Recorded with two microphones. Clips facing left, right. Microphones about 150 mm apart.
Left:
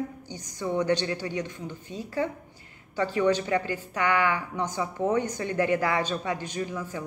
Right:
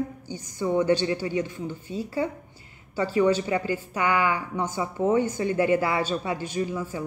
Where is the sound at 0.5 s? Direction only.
10° right (ahead or behind).